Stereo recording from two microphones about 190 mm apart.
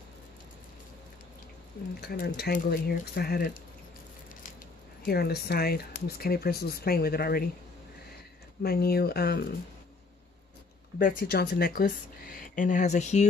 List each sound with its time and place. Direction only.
2.0 s speech: 60° left (ahead or behind)
5.0 s speech: 55° left (ahead or behind)
8.6 s speech: 55° left (ahead or behind)
11.0 s speech: 45° left (ahead or behind)